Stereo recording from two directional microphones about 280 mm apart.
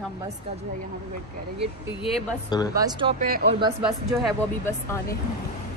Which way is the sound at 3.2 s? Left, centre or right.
Right.